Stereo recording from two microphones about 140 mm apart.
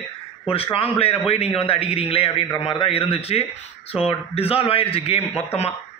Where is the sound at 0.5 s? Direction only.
40° left (ahead or behind).